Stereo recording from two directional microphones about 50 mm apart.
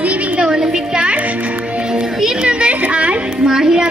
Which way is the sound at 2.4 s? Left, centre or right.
Right.